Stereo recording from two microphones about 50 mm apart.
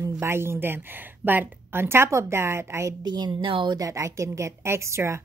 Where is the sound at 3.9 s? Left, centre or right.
Right.